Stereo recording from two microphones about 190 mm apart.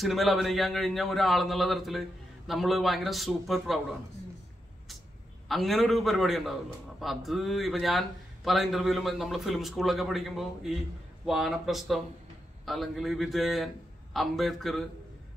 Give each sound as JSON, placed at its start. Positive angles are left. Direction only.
{"t": 0.0, "sound": "a man's voice", "side_deg": 0}
{"t": 5.5, "sound": "a man's voice", "side_deg": 0}